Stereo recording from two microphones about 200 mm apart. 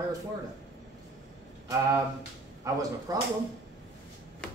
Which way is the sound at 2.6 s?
15° right (ahead or behind).